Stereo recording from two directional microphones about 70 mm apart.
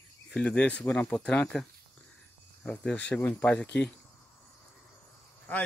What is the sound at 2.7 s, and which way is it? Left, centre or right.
Speech, centre.